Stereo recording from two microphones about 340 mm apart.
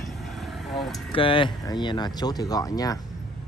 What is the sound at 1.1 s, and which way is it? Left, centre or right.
Speech, centre.